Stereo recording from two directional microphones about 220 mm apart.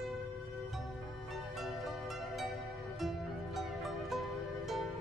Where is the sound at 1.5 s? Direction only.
Centre (ahead or behind).